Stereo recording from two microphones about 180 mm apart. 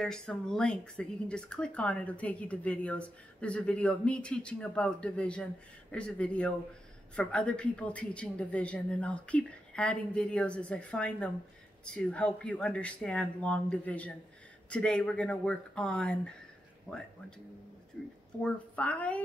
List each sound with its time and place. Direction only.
0.0 s speech: 5° left (ahead or behind)
18.4 s speech: 5° left (ahead or behind)